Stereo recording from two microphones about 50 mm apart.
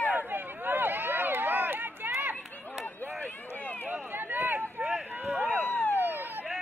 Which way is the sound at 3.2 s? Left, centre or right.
Left.